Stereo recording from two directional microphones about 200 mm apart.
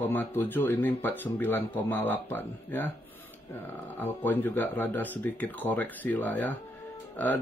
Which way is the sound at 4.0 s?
10° left (ahead or behind).